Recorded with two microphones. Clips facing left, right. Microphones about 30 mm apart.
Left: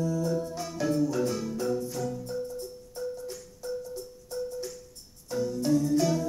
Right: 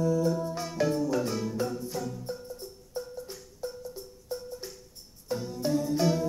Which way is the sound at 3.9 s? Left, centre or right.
Right.